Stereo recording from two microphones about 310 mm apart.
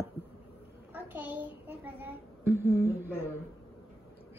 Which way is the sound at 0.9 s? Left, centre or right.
Centre.